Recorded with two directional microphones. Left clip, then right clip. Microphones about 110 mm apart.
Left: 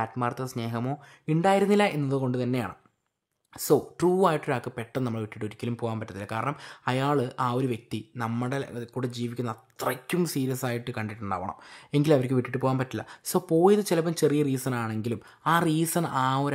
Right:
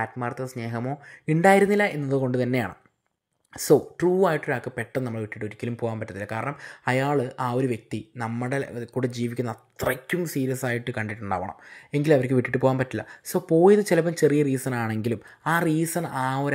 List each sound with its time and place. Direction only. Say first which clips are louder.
0.0 s speech: even; centre (ahead or behind)
1.2 s speech: right 5 dB; 20° right (ahead or behind)
1.7 s speech: right 1 dB; centre (ahead or behind)
2.1 s speech: right 4 dB; 15° right (ahead or behind)
4.0 s speech: right 2 dB; 5° left (ahead or behind); by 9.6 s 15° right (ahead or behind)
9.8 s speech: right 2 dB; 5° right (ahead or behind)
11.4 s speech: right 1 dB; centre (ahead or behind)
12.4 s speech: right 5 dB; 15° right (ahead or behind)
13.0 s speech: even; 5° left (ahead or behind)
13.6 s speech: right 4 dB; 5° right (ahead or behind)
14.8 s speech: right 4 dB; 20° right (ahead or behind)
15.5 s speech: right 1 dB; centre (ahead or behind)